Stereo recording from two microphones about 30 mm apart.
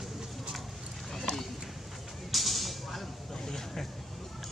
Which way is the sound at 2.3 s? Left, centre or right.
Centre.